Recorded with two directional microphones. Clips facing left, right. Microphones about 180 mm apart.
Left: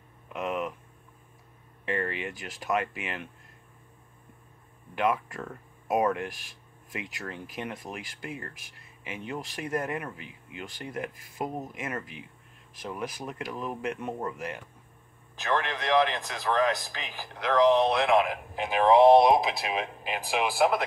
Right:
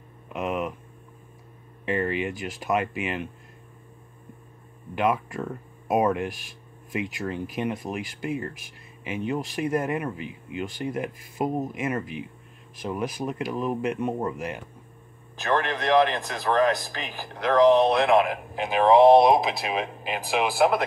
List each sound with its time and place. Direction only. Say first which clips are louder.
0.3 s speech: right 3 dB; 15° right (ahead or behind)
1.9 s speech: right 5 dB; 15° right (ahead or behind)
4.9 s speech: right 3 dB; 20° right (ahead or behind)
15.3 s speech: right 4 dB; 50° right (ahead or behind)
18.7 s speech: right 2 dB; 30° right (ahead or behind)